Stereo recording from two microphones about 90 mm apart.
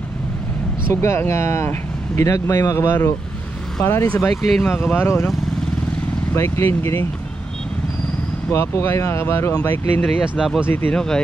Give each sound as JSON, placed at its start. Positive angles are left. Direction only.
{"t": 1.0, "sound": "speech", "side_deg": 30}
{"t": 4.3, "sound": "speech", "side_deg": 0}
{"t": 4.6, "sound": "speech", "side_deg": 25}
{"t": 6.3, "sound": "speech", "side_deg": 30}
{"t": 8.5, "sound": "speech", "side_deg": 35}
{"t": 9.5, "sound": "speech", "side_deg": 15}
{"t": 10.2, "sound": "speech", "side_deg": -10}
{"t": 10.7, "sound": "speech", "side_deg": 20}